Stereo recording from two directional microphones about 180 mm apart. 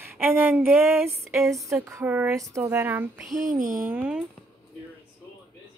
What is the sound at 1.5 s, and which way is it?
A woman's voice, 15° right (ahead or behind).